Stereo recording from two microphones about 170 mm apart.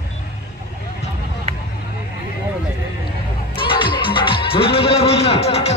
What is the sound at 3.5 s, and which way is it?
Speech, 30° left (ahead or behind).